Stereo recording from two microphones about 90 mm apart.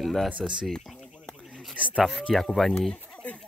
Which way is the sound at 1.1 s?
10° left (ahead or behind).